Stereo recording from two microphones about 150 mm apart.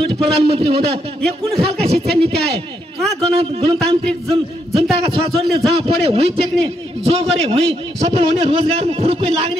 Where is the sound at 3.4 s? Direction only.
40° right (ahead or behind).